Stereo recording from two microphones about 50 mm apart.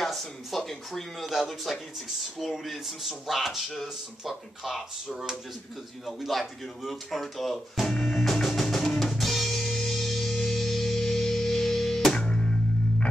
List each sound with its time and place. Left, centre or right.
0.0 s speech: centre
8.0 s drum kit: centre
12.1 s music: centre